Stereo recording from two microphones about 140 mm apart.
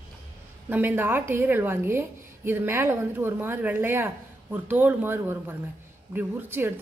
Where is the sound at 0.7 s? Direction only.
15° right (ahead or behind).